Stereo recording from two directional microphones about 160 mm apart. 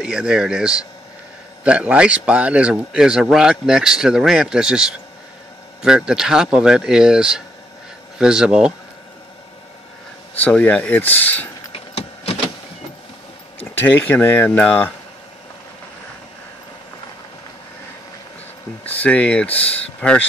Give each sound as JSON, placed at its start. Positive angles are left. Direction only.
{"t": 0.0, "sound": "a man's voice", "side_deg": -5}
{"t": 10.3, "sound": "speech", "side_deg": 10}
{"t": 11.7, "sound": "vehicle", "side_deg": 40}
{"t": 13.7, "sound": "speech", "side_deg": 10}
{"t": 18.9, "sound": "speech", "side_deg": 10}